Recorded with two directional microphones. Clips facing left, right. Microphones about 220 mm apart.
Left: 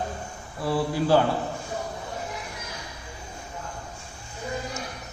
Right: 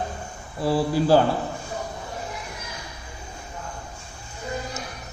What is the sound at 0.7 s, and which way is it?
Speech, 35° right (ahead or behind).